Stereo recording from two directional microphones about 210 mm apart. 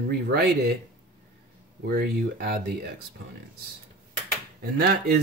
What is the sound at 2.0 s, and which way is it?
Speech, 45° right (ahead or behind).